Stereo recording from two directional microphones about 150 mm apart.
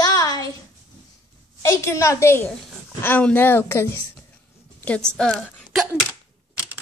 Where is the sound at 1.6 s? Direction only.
20° left (ahead or behind).